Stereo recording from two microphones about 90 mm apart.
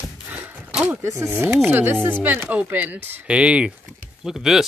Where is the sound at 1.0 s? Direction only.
35° right (ahead or behind).